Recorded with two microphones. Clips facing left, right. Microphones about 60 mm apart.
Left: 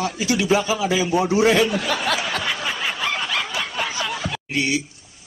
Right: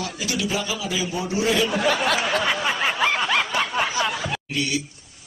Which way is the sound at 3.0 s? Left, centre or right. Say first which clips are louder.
Right 3 dB; right.